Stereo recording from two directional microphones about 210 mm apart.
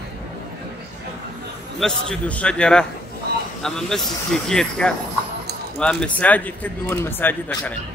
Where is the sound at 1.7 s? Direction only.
Centre (ahead or behind).